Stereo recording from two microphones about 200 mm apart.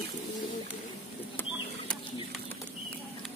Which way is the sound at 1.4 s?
10° left (ahead or behind).